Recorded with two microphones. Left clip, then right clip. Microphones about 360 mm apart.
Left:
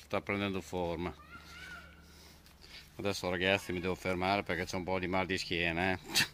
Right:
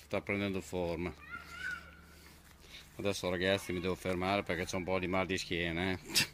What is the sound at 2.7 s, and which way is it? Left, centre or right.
Speech, centre.